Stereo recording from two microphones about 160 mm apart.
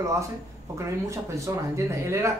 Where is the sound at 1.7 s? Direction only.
20° right (ahead or behind).